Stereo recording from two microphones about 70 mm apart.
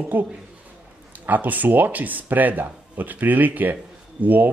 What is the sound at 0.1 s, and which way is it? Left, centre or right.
Speech, right.